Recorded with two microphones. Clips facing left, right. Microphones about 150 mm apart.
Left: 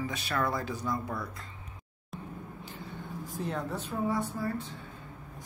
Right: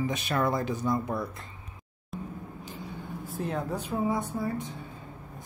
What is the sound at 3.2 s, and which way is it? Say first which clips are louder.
Speech: right 3 dB; 5° right (ahead or behind).